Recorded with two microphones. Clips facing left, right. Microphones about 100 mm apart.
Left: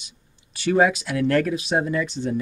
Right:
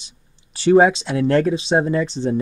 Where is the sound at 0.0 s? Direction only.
30° right (ahead or behind).